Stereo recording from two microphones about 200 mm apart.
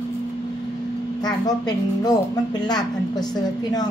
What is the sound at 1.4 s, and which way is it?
Speech, 20° left (ahead or behind).